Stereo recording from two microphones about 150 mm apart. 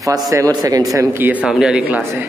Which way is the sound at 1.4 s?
5° right (ahead or behind).